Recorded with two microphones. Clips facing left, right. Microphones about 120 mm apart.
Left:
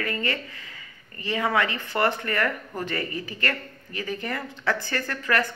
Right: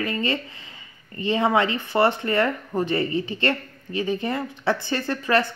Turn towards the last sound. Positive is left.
turn(degrees=-20)  # may be behind; listen again after turning